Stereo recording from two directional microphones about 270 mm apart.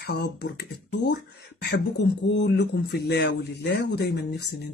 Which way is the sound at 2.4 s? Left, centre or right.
Left.